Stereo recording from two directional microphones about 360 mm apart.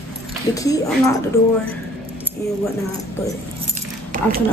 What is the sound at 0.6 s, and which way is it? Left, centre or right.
Speech, centre.